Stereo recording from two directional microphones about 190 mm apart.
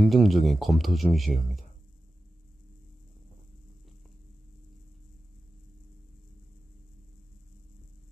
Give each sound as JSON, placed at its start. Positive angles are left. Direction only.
{"t": 0.0, "sound": "speech", "side_deg": 0}
{"t": 1.2, "sound": "speech", "side_deg": 40}